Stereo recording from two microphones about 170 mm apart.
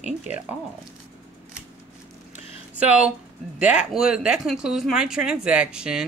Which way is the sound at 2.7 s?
5° right (ahead or behind).